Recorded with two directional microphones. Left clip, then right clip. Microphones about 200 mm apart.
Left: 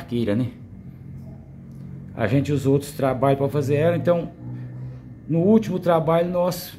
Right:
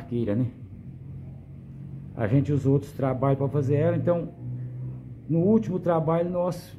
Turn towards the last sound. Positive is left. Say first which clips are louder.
# left 5 dB
turn(degrees=0)  # may be behind; listen again after turning